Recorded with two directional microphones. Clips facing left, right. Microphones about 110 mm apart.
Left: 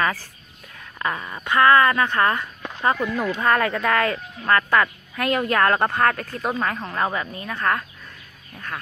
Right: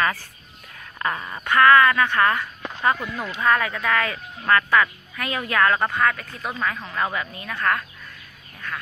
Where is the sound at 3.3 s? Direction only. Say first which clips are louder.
Right 1 dB; 40° left (ahead or behind).